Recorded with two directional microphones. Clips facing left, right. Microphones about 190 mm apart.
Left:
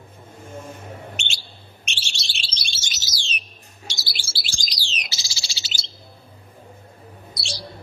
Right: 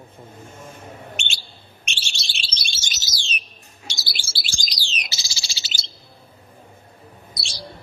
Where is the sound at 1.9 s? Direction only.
50° right (ahead or behind).